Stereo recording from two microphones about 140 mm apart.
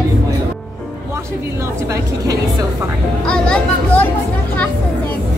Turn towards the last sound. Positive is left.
turn(degrees=5)  # may be behind; listen again after turning